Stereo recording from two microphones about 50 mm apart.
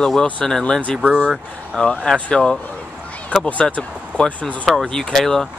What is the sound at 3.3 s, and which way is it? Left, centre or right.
Speech, left.